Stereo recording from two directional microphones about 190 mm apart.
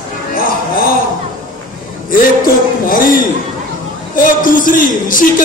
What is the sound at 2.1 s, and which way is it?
A man's voice, 45° left (ahead or behind).